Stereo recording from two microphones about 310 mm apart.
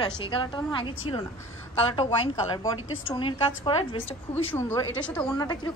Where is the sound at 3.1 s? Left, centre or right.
Centre.